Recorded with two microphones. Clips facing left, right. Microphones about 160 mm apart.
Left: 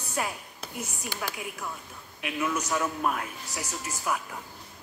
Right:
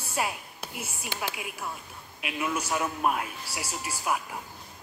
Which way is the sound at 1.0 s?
20° right (ahead or behind).